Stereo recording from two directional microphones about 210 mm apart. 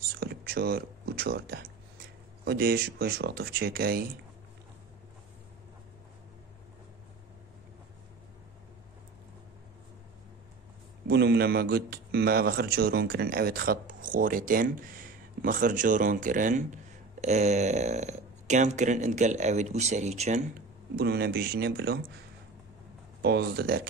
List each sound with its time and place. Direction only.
0.1 s a sound: 45° right (ahead or behind)
2.4 s a man's voice: 50° right (ahead or behind)
11.1 s a man's voice: 50° right (ahead or behind); by 20.4 s 30° right (ahead or behind)
20.9 s a man's voice: 50° right (ahead or behind)
23.2 s a man's voice: 50° right (ahead or behind)